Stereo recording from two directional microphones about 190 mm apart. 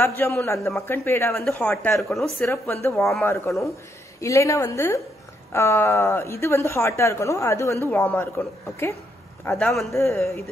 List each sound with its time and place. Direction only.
0.0 s speech: 15° left (ahead or behind)
2.3 s a man's voice: 10° left (ahead or behind)
9.7 s a man's voice: centre (ahead or behind)
9.9 s speech: 15° left (ahead or behind)